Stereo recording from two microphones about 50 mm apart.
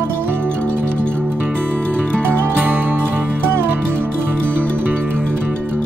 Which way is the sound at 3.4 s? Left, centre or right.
Right.